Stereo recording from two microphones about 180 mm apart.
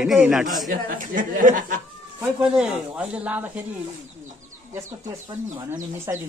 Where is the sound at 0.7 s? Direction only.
50° right (ahead or behind).